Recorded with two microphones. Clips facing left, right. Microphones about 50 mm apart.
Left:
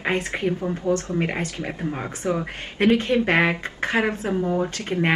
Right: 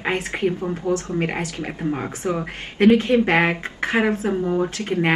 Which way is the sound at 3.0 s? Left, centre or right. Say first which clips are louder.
Right 2 dB; right.